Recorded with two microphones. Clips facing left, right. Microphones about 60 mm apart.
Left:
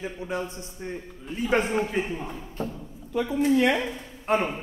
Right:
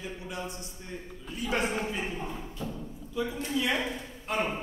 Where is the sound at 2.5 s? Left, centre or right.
Left.